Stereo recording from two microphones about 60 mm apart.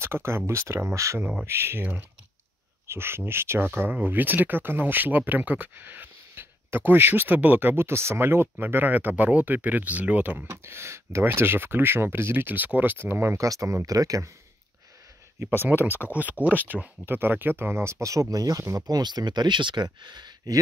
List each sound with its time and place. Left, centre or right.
0.0 s speech: right
0.9 s speech: right
1.4 s speech: right
2.9 s speech: right
10.5 s speech: right
11.2 s speech: right
13.4 s speech: right
15.3 s speech: right
18.3 s speech: right